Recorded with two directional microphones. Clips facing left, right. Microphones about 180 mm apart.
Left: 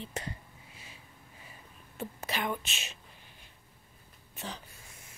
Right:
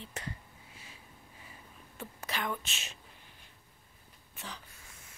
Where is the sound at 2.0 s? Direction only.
30° left (ahead or behind).